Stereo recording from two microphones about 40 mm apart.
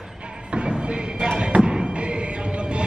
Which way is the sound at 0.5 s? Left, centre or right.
Right.